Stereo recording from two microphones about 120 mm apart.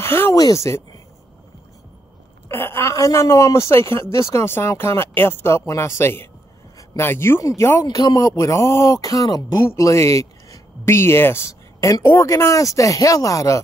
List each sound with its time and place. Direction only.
0.0 s a sound: 20° left (ahead or behind)
0.4 s a man's voice: 25° left (ahead or behind)
2.4 s a man's voice: 20° left (ahead or behind)
7.8 s a man's voice: 35° left (ahead or behind)